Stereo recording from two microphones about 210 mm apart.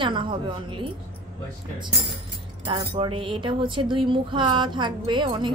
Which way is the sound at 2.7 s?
25° right (ahead or behind).